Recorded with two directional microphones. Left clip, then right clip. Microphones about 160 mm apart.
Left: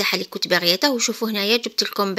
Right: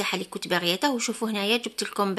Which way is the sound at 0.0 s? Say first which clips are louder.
Left 7 dB; 25° left (ahead or behind).